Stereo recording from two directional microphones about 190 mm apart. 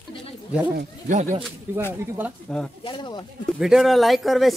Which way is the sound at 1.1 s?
40° right (ahead or behind).